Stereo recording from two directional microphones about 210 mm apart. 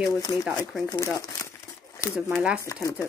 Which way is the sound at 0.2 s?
15° left (ahead or behind).